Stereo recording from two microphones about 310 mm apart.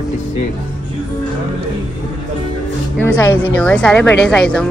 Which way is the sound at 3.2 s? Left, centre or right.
Centre.